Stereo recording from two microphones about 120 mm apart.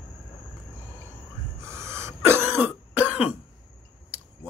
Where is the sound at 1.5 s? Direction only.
20° right (ahead or behind).